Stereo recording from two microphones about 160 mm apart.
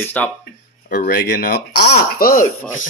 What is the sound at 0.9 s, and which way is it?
Speech, 60° left (ahead or behind).